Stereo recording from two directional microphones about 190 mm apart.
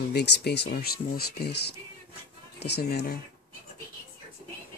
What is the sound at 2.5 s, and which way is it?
Speech, 60° left (ahead or behind).